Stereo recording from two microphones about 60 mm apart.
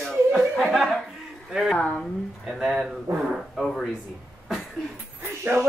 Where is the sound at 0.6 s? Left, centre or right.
Centre.